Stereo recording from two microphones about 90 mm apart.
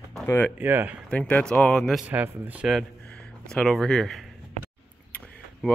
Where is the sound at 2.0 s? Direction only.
15° right (ahead or behind).